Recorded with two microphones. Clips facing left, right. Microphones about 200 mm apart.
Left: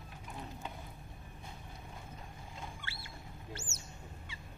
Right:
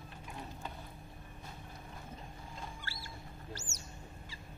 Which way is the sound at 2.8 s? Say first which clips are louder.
Right 1 dB; 40° right (ahead or behind).